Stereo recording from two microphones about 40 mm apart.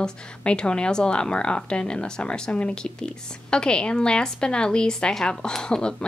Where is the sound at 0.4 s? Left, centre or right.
Left.